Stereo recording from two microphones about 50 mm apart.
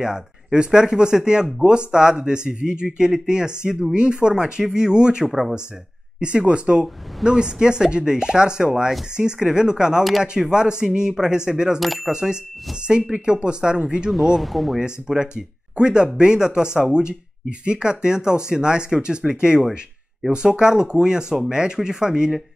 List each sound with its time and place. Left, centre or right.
0.0 s speech: centre
6.1 s speech: right
11.8 s speech: centre
12.1 s speech: centre
14.1 s speech: centre
14.8 s speech: centre